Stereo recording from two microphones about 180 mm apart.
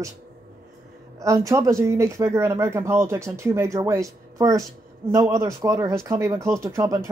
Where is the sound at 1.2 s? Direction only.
20° right (ahead or behind).